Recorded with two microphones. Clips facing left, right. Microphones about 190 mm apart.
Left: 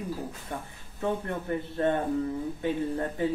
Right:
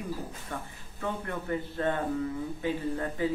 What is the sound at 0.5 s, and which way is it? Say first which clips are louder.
Speech: left 1 dB; 20° left (ahead or behind).